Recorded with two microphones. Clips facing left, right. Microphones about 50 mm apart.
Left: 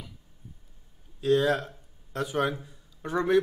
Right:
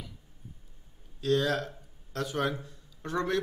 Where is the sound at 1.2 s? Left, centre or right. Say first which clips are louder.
Left 4 dB; centre.